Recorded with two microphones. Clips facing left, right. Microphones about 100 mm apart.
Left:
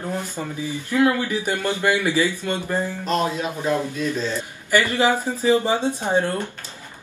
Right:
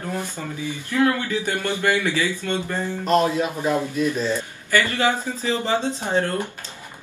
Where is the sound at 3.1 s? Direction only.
15° right (ahead or behind).